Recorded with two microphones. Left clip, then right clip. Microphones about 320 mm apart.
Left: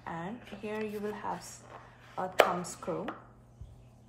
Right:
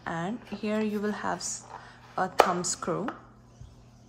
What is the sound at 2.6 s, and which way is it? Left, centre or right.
Speech, right.